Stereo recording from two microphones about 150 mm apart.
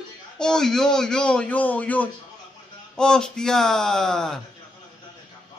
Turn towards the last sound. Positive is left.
turn(degrees=5)  # may be behind; listen again after turning